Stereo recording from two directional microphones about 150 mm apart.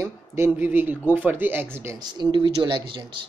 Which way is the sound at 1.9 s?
30° right (ahead or behind).